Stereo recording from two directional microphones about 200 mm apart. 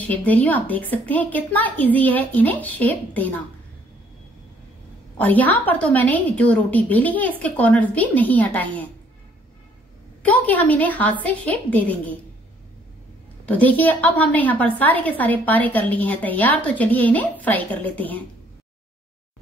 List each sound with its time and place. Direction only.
0.0 s a woman's voice: 10° left (ahead or behind)
5.1 s a woman's voice: 10° left (ahead or behind)
10.2 s a woman's voice: 10° left (ahead or behind)
13.5 s a woman's voice: 10° left (ahead or behind)